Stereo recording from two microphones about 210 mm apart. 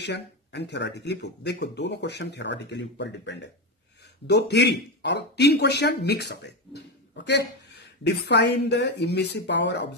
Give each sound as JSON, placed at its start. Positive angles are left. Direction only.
{"t": 0.0, "sound": "speech", "side_deg": 55}